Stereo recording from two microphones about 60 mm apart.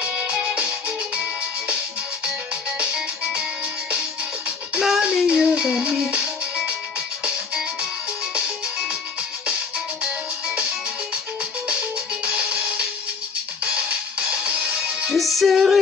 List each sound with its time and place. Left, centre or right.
0.0 s music: centre
4.7 s music: centre
13.7 s music: right
15.0 s music: centre